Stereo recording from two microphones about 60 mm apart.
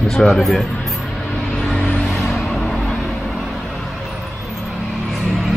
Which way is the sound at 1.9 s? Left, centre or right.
Centre.